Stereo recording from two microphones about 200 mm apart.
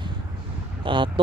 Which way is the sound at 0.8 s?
25° right (ahead or behind).